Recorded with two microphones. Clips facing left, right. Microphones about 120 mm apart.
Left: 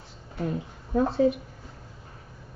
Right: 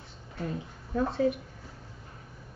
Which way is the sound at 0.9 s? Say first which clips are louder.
Left 5 dB; 30° left (ahead or behind).